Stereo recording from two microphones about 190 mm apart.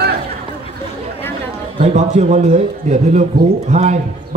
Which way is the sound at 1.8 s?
40° right (ahead or behind).